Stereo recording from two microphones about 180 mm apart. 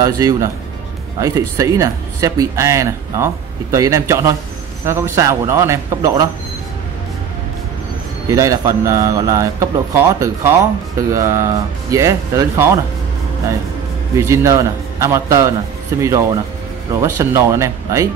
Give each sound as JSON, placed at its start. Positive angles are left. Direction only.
{"t": 0.0, "sound": "speech", "side_deg": -20}
{"t": 8.3, "sound": "speech", "side_deg": -15}
{"t": 14.1, "sound": "speech", "side_deg": -15}